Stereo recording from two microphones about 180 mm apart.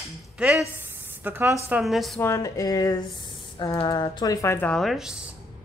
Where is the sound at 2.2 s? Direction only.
15° left (ahead or behind).